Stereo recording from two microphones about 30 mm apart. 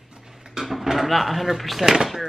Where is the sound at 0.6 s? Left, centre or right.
Centre.